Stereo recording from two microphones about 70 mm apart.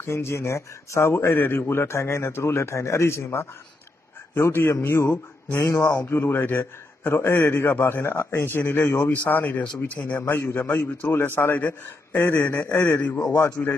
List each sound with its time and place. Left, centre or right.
0.0 s speech: left
5.8 s a man's voice: left
10.1 s a man's voice: left